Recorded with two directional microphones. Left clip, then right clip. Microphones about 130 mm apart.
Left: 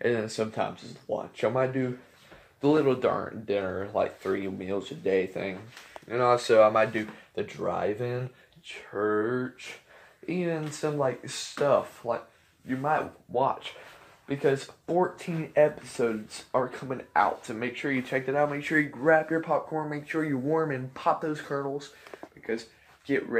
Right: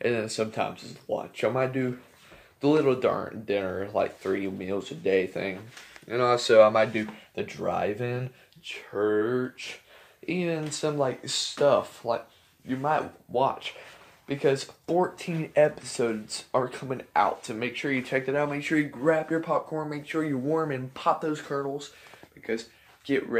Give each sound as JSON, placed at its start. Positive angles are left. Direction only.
{"t": 0.0, "sound": "speech", "side_deg": -10}